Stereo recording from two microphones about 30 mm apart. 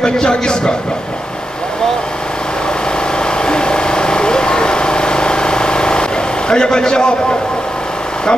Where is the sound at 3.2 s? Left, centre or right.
Left.